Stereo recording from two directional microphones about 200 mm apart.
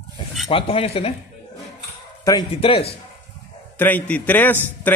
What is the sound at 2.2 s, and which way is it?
Speech, 25° left (ahead or behind).